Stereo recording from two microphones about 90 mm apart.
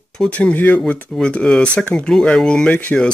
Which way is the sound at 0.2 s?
15° left (ahead or behind).